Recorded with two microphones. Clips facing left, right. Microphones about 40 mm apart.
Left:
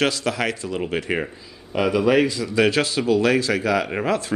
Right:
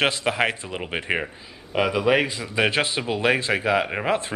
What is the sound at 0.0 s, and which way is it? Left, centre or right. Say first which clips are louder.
Speech: even; right.